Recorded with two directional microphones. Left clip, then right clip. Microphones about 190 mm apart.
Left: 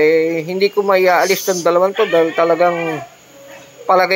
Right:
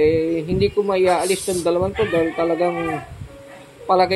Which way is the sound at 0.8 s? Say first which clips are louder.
Left 6 dB; centre (ahead or behind).